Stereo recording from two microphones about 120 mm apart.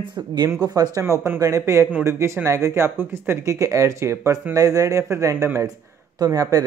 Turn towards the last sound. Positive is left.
turn(degrees=-30)  # may be behind; listen again after turning